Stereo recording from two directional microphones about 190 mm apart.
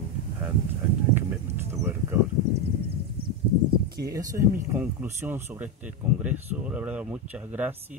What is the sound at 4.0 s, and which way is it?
Speech, 20° right (ahead or behind).